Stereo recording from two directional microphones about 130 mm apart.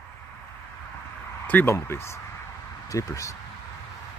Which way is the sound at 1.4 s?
15° left (ahead or behind).